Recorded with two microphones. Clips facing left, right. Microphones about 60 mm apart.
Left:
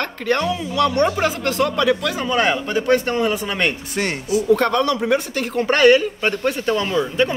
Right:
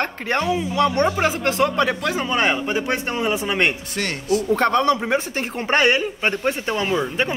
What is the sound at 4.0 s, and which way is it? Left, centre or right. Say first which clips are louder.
Speech: left 1 dB; centre.